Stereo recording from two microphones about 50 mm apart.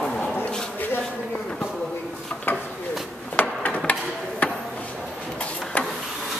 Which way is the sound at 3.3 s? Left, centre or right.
Left.